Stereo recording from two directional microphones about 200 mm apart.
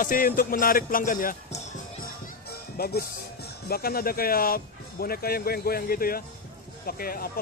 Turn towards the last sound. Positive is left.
turn(degrees=45)  # may be behind; listen again after turning